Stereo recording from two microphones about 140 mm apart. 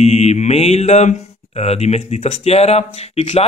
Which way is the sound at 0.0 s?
50° left (ahead or behind).